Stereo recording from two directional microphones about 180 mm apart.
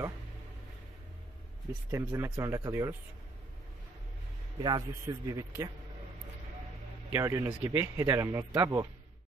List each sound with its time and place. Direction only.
1.9 s speech: 15° right (ahead or behind)
4.6 s speech: 25° right (ahead or behind)
7.2 s speech: 15° right (ahead or behind)